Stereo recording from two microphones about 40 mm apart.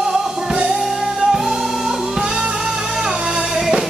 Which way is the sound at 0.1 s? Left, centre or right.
Centre.